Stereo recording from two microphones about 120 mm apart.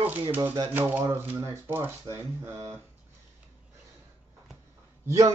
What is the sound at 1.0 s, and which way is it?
A man's voice, 25° right (ahead or behind).